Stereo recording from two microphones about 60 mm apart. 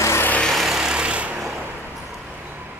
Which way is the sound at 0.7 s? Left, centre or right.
Centre.